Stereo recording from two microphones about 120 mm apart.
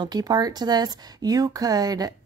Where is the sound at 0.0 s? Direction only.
35° right (ahead or behind).